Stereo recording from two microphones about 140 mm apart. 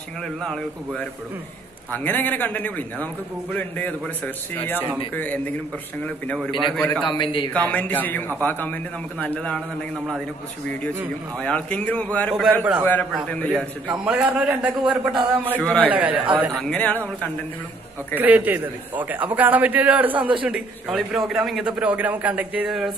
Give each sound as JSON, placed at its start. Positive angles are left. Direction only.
{"t": 0.4, "sound": "a man's voice", "side_deg": 5}
{"t": 7.1, "sound": "speech", "side_deg": 35}
{"t": 7.5, "sound": "a man's voice", "side_deg": 10}
{"t": 11.3, "sound": "a man's voice", "side_deg": 5}
{"t": 12.5, "sound": "a man's voice", "side_deg": -10}
{"t": 13.1, "sound": "a man's voice", "side_deg": 10}
{"t": 13.8, "sound": "a man's voice", "side_deg": -5}
{"t": 15.6, "sound": "a man's voice", "side_deg": 5}
{"t": 15.9, "sound": "a man's voice", "side_deg": -10}
{"t": 16.6, "sound": "a man's voice", "side_deg": 10}
{"t": 18.1, "sound": "a man's voice", "side_deg": -10}